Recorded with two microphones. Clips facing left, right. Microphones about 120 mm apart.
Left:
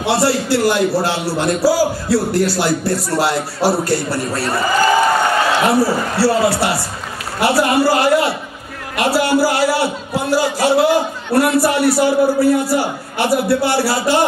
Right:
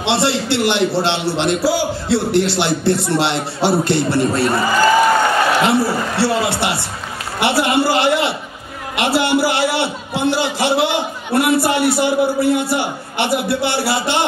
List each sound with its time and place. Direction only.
0.0 s speech: 25° right (ahead or behind)
5.7 s speech: 25° right (ahead or behind)